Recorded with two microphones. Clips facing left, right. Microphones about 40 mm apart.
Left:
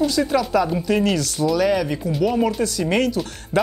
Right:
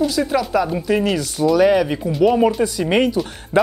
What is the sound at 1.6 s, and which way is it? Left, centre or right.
Speech, centre.